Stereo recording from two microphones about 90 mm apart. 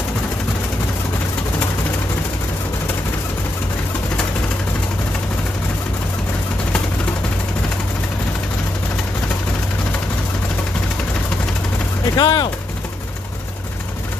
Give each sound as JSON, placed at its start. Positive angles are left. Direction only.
{"t": 12.2, "sound": "speech", "side_deg": 50}